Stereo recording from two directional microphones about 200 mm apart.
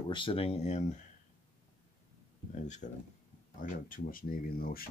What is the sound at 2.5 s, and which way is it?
Speech, 35° left (ahead or behind).